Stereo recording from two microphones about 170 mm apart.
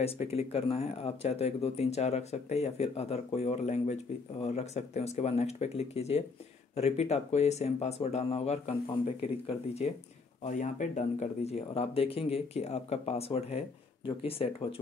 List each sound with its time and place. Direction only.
0.0 s speech: 40° left (ahead or behind)